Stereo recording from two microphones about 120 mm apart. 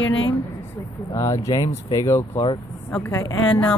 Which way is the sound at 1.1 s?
25° left (ahead or behind).